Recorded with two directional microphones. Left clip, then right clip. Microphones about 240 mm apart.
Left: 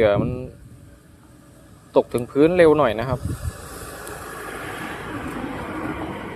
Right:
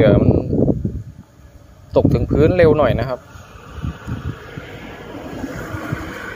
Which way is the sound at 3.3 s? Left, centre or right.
Left.